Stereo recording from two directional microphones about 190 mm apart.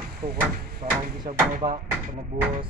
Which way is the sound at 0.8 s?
35° right (ahead or behind).